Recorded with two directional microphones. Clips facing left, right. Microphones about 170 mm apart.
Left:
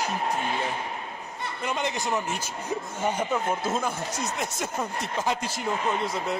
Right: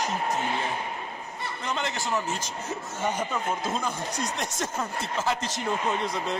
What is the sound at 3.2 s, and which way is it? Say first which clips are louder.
A man's voice: left 2 dB; 10° left (ahead or behind).